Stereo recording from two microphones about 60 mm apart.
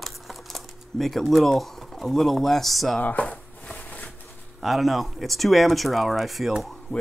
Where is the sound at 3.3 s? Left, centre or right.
Left.